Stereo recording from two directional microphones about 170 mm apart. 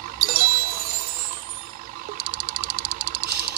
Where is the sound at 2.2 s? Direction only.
60° right (ahead or behind).